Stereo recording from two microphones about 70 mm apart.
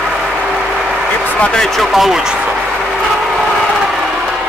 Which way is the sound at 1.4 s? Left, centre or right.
Centre.